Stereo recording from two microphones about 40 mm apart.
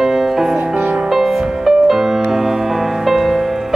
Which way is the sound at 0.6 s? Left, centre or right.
Right.